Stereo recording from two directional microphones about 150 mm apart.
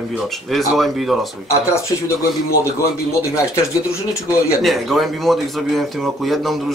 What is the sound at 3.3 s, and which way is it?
Speech, 20° left (ahead or behind).